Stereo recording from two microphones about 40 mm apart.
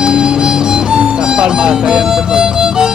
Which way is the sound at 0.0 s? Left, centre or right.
Centre.